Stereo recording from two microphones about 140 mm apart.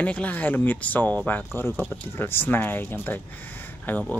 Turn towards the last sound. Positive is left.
turn(degrees=10)  # may be behind; listen again after turning